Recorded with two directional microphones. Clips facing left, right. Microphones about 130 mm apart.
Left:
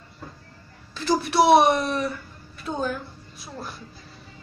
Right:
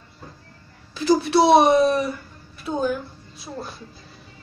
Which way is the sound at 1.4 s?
20° right (ahead or behind).